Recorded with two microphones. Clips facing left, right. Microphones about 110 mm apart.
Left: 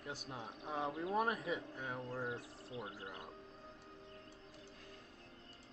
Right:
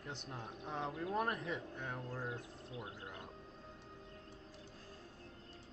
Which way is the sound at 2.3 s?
25° left (ahead or behind).